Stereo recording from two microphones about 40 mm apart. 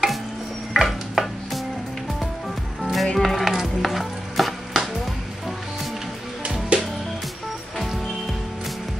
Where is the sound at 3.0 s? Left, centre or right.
Centre.